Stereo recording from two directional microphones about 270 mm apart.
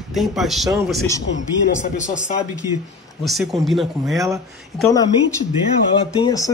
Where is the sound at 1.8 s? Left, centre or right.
Left.